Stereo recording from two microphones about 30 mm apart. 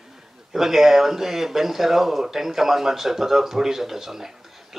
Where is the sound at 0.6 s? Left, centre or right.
Centre.